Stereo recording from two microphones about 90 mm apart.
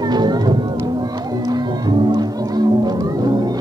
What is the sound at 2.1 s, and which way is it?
Music, 50° right (ahead or behind).